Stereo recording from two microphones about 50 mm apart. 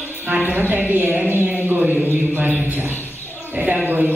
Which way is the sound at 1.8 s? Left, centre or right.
Right.